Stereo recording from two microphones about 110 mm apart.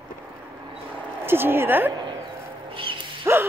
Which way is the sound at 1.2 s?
20° right (ahead or behind).